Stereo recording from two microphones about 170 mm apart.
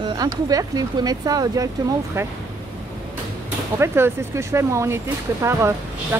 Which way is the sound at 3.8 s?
15° right (ahead or behind).